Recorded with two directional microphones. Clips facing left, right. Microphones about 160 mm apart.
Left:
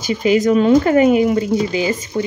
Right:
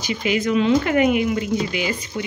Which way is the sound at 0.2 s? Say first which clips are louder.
Left 6 dB; 40° left (ahead or behind).